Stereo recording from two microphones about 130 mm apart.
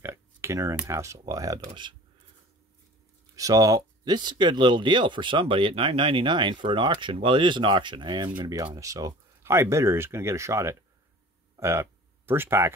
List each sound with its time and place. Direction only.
0.0 s computer keyboard: 20° right (ahead or behind)
0.8 s speech: 20° right (ahead or behind)
1.7 s speech: 35° right (ahead or behind)
3.3 s speech: 25° right (ahead or behind)